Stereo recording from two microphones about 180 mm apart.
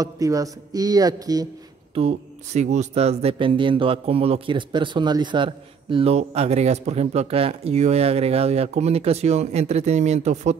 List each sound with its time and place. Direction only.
0.0 s speech: 20° right (ahead or behind)
2.0 s speech: 35° right (ahead or behind)